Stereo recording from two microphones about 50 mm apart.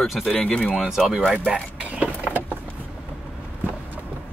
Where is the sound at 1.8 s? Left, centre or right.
Right.